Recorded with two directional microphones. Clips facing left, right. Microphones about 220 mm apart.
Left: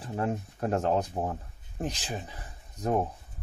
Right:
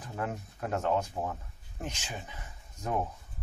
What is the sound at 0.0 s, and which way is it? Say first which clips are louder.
Speech: left 5 dB; 30° left (ahead or behind).